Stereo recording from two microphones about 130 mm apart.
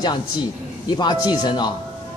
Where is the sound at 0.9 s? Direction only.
35° left (ahead or behind).